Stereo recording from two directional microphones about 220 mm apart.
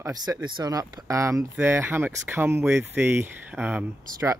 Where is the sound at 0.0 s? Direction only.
15° right (ahead or behind).